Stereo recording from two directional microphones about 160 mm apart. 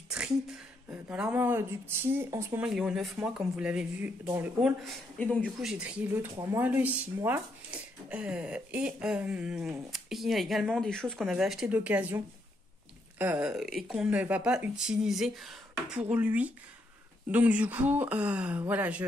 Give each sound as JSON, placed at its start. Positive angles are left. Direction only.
{"t": 0.8, "sound": "speech", "side_deg": -10}
{"t": 5.2, "sound": "speech", "side_deg": 10}
{"t": 6.3, "sound": "speech", "side_deg": -20}
{"t": 13.2, "sound": "speech", "side_deg": -10}